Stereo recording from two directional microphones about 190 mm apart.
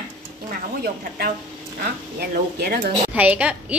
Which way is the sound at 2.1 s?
55° right (ahead or behind).